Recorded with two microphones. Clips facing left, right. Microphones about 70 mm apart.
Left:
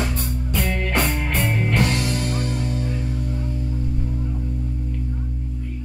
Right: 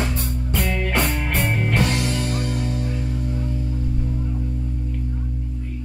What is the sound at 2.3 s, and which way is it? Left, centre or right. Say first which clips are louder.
Music: even; left.